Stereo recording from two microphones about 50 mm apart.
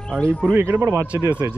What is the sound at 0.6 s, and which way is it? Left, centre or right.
Speech, right.